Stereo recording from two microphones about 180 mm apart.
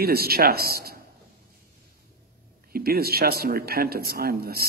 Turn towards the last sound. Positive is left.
turn(degrees=-60)  # may be behind; listen again after turning